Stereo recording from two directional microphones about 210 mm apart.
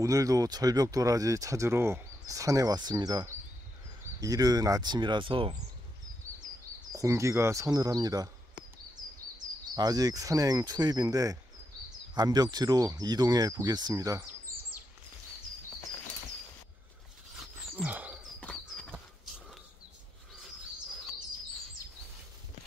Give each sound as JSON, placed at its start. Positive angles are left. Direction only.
{"t": 0.0, "sound": "speech", "side_deg": -15}
{"t": 6.9, "sound": "speech", "side_deg": -15}
{"t": 9.8, "sound": "speech", "side_deg": -15}
{"t": 17.7, "sound": "a sound", "side_deg": -10}
{"t": 18.4, "sound": "horse", "side_deg": 5}